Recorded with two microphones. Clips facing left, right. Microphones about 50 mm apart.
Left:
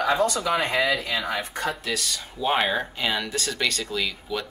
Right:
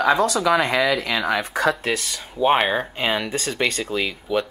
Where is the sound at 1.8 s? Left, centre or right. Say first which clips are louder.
Right 4 dB; right.